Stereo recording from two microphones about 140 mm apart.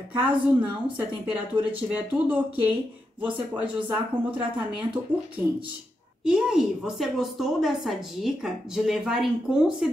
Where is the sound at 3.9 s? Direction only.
35° right (ahead or behind).